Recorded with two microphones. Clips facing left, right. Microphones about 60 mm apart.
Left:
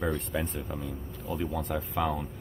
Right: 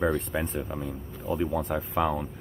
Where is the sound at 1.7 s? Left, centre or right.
Centre.